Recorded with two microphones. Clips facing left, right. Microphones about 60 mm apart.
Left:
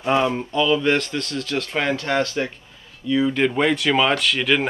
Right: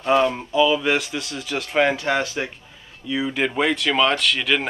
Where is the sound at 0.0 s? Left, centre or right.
Centre.